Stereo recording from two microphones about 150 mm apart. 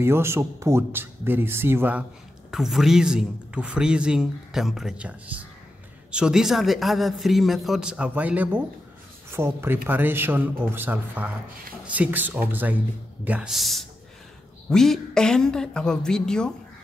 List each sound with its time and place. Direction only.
0.0 s speech: 15° right (ahead or behind)
2.5 s speech: centre (ahead or behind)
6.1 s speech: 5° right (ahead or behind)